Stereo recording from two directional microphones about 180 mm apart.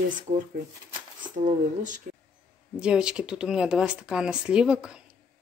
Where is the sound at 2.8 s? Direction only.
5° right (ahead or behind).